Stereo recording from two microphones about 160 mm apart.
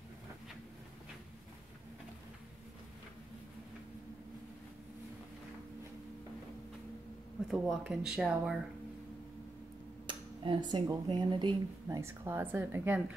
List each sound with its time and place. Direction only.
7.4 s speech: centre (ahead or behind)
10.0 s speech: 30° right (ahead or behind)
12.0 s a woman's voice: 15° right (ahead or behind)